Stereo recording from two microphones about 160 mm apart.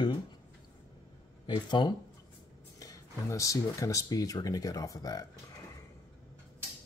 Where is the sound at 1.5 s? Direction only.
30° left (ahead or behind).